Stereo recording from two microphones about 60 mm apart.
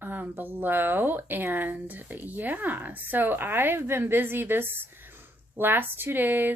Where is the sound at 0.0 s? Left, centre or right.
Right.